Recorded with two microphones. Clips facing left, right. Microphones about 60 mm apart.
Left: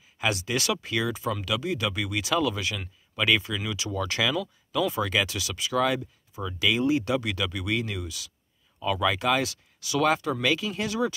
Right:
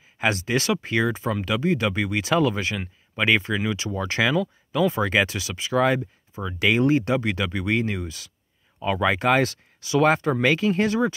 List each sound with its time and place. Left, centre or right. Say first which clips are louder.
0.2 s speech: right 4 dB; right